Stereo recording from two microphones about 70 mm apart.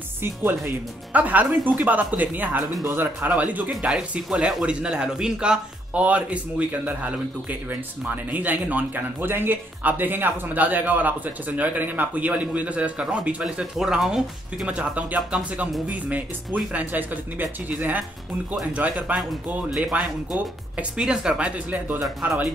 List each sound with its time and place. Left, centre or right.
0.2 s speech: right
1.1 s speech: right
3.3 s speech: right
3.9 s speech: centre
14.7 s speech: centre